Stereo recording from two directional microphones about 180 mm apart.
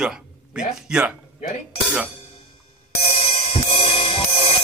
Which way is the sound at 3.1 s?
35° left (ahead or behind).